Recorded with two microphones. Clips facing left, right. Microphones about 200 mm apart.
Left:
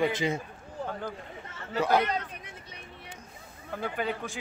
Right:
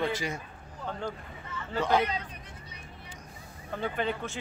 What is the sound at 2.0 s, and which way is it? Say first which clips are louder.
Speech: left 1 dB; 50° left (ahead or behind).